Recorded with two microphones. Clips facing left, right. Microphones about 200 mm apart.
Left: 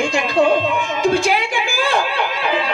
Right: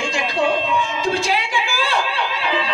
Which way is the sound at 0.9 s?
50° left (ahead or behind).